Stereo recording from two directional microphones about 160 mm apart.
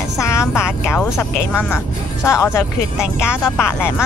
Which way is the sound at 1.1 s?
15° left (ahead or behind).